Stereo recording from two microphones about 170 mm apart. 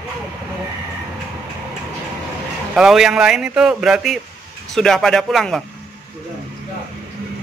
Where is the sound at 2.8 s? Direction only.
5° right (ahead or behind).